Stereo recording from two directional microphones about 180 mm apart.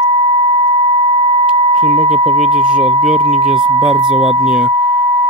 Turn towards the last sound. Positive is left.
turn(degrees=-5)  # may be behind; listen again after turning